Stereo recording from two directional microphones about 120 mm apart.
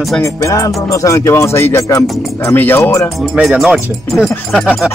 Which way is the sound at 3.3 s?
5° right (ahead or behind).